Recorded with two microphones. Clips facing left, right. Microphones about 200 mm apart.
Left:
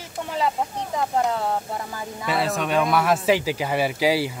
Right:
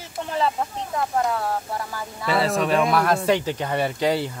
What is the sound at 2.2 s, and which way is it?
Speech, centre (ahead or behind).